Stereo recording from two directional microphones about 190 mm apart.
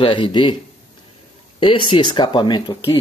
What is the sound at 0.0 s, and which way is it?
Speech, 25° left (ahead or behind).